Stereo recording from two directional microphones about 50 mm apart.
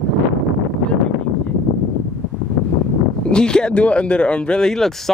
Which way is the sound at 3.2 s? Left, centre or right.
Centre.